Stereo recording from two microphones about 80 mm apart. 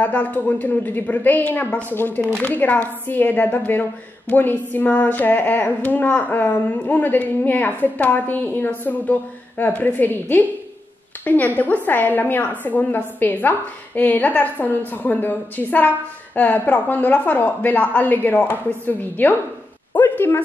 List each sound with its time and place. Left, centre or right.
0.0 s speech: centre